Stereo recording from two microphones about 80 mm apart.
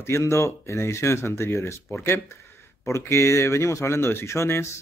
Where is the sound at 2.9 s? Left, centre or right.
Left.